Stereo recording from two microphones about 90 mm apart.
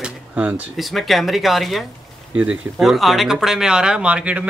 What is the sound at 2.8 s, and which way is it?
Speech, centre (ahead or behind).